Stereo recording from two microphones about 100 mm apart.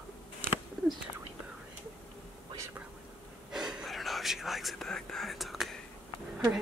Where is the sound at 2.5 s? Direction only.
25° right (ahead or behind).